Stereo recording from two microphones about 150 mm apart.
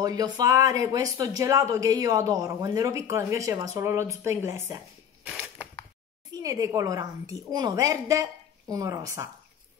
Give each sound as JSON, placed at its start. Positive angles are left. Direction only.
{"t": 0.0, "sound": "speech", "side_deg": -25}
{"t": 5.2, "sound": "crushing", "side_deg": -10}
{"t": 6.3, "sound": "speech", "side_deg": -20}